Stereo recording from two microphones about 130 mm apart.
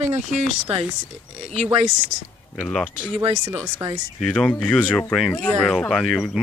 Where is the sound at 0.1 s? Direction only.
60° right (ahead or behind).